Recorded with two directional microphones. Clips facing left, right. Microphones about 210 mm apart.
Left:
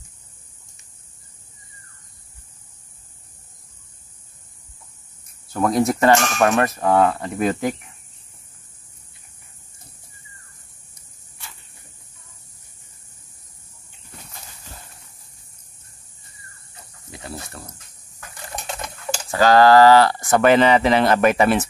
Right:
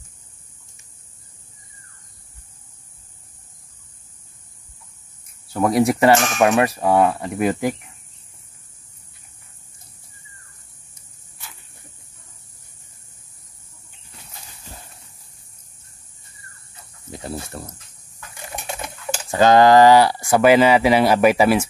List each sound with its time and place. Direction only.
5.5 s speech: 10° right (ahead or behind)
6.1 s speech: centre (ahead or behind)
6.4 s speech: 15° right (ahead or behind)
17.2 s a sound: 25° right (ahead or behind)
18.5 s a sound: 5° right (ahead or behind)
19.3 s speech: 20° right (ahead or behind)